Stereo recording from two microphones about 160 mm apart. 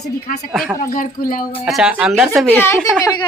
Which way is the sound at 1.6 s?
5° right (ahead or behind).